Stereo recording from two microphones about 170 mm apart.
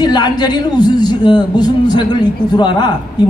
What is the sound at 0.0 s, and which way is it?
A man's voice, 25° left (ahead or behind).